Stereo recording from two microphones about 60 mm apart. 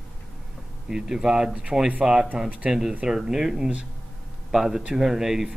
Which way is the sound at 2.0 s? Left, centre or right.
Centre.